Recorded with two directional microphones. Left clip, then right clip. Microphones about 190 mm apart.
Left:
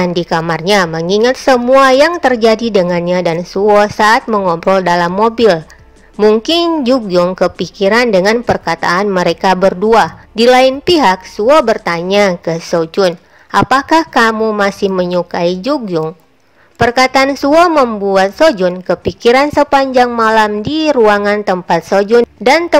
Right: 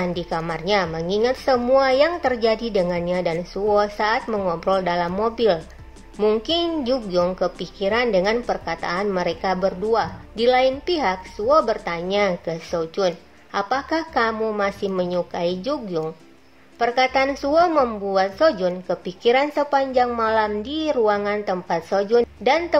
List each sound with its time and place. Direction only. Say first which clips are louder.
0.0 s speech: left 11 dB; 35° left (ahead or behind)